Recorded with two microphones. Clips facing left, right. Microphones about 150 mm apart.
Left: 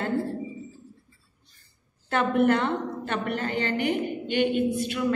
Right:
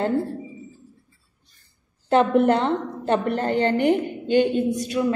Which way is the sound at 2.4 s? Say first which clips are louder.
Right 3 dB; 35° right (ahead or behind).